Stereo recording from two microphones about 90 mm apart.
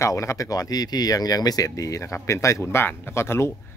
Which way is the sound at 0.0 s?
35° left (ahead or behind).